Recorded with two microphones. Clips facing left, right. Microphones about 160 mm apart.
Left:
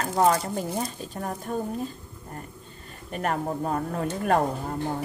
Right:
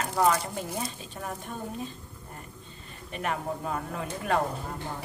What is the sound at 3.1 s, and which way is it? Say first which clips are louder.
Speech: left 4 dB; 45° left (ahead or behind).